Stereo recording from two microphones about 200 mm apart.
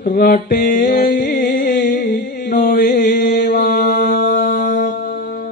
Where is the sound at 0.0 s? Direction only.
45° left (ahead or behind).